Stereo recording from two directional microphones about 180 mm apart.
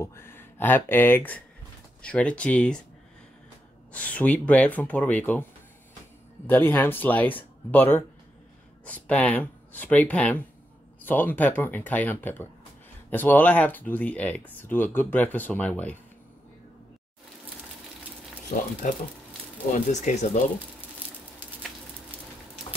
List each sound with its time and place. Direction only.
0.0 s speech: 15° left (ahead or behind)
3.9 s speech: 5° left (ahead or behind)
18.5 s speech: 50° left (ahead or behind)
19.9 s speech: 40° left (ahead or behind)